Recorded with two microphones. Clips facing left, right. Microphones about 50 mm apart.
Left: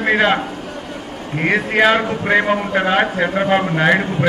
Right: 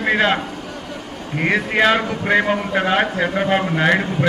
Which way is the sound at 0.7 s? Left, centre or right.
Left.